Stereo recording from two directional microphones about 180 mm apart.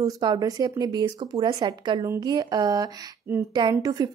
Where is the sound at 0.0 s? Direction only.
20° right (ahead or behind).